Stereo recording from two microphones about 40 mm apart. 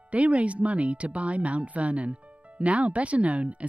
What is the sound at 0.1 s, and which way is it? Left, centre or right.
Speech, right.